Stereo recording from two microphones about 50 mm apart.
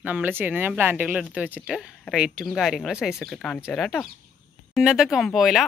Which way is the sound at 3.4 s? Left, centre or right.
Centre.